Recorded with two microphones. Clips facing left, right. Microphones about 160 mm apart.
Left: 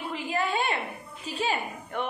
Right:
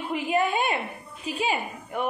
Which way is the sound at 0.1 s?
15° right (ahead or behind).